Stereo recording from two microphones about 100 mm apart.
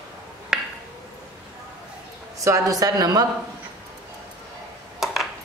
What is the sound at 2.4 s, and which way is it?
Speech, 35° right (ahead or behind).